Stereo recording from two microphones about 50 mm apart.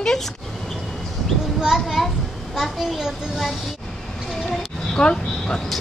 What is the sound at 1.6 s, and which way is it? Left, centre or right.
A child's voice, centre.